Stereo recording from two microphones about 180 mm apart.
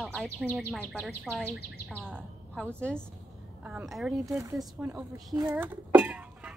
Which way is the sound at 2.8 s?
5° left (ahead or behind).